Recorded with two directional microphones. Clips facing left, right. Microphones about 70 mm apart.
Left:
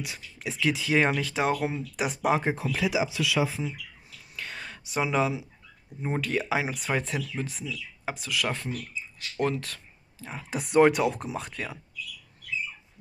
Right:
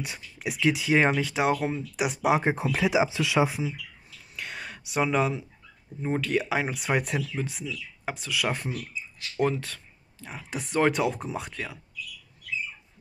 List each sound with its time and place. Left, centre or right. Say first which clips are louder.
0.0 s speech: right 2 dB; right
2.4 s speech: right 2 dB; right
4.4 s a sound: right 1 dB; centre
6.0 s speech: right 2 dB; centre
7.0 s speech: right 2 dB; centre
7.3 s speech: right 1 dB; centre
8.5 s speech: right 1 dB; centre